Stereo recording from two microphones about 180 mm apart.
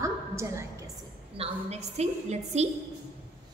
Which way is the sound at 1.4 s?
35° right (ahead or behind).